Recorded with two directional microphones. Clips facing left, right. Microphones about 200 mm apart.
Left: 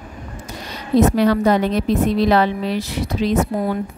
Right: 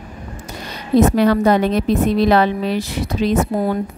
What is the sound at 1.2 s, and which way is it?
Speech, 55° right (ahead or behind).